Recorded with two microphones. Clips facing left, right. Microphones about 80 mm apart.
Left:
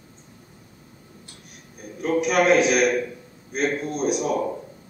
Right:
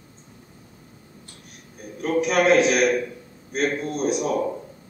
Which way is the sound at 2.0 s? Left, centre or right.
Centre.